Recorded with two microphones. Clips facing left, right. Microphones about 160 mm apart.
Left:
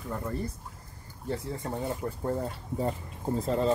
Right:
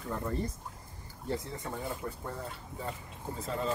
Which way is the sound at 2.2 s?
35° left (ahead or behind).